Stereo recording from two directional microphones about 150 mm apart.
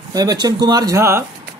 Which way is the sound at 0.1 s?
25° right (ahead or behind).